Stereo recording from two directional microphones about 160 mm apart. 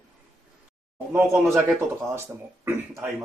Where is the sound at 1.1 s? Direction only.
15° right (ahead or behind).